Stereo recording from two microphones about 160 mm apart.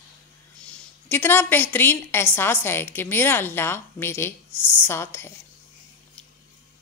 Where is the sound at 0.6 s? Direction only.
10° left (ahead or behind).